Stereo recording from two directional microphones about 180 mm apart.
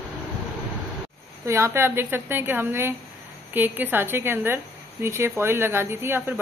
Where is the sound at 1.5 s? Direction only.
15° right (ahead or behind).